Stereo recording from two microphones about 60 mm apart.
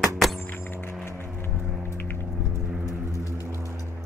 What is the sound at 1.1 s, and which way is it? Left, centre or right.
Vehicle, left.